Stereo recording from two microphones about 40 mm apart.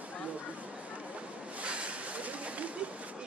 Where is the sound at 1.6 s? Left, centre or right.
Right.